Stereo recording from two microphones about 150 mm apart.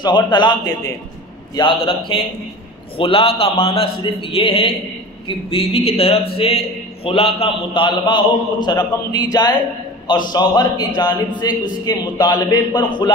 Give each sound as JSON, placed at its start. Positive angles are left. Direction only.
{"t": 0.0, "sound": "a man's voice", "side_deg": 30}